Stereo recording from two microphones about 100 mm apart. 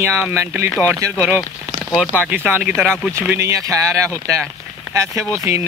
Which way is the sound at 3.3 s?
30° right (ahead or behind).